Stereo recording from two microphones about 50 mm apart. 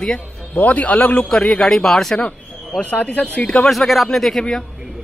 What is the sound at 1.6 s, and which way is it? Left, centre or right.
Speech, centre.